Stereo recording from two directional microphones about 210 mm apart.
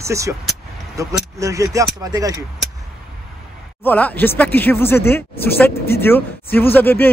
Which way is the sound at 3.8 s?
10° left (ahead or behind).